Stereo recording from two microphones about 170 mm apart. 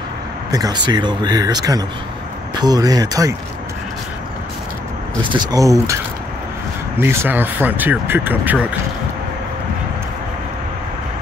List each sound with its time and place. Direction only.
0.5 s speech: 20° right (ahead or behind)
5.2 s speech: 25° right (ahead or behind)
7.0 s speech: 15° right (ahead or behind)